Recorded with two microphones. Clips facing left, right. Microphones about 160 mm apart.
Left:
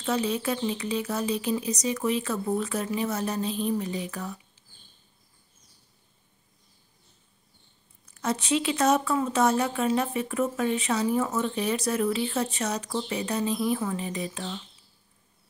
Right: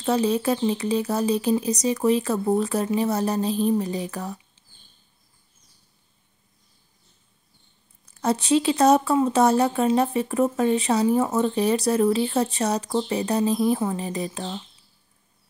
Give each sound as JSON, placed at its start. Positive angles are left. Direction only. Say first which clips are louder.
{"t": 0.0, "sound": "speech", "louder": "right 5 dB", "side_deg": -35}
{"t": 8.0, "sound": "speech", "louder": "right 5 dB", "side_deg": -35}